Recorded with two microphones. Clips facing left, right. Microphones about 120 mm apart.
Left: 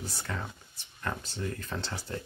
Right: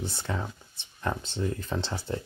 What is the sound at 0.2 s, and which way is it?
Speech, 25° right (ahead or behind).